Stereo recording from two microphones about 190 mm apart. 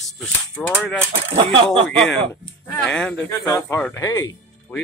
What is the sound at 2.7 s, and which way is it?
Speech, 5° left (ahead or behind).